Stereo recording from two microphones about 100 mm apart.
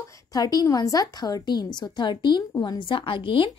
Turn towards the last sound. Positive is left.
turn(degrees=55)  # may be behind; listen again after turning